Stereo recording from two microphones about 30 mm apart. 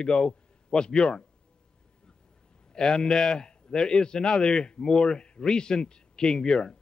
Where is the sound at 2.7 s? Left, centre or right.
Left.